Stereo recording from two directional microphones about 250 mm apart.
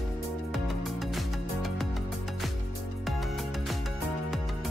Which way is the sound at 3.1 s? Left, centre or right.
Centre.